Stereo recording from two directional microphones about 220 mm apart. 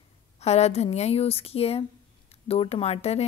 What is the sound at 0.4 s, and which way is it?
Speech, 30° left (ahead or behind).